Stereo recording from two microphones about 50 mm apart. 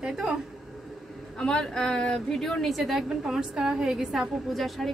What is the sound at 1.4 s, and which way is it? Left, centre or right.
Speech, centre.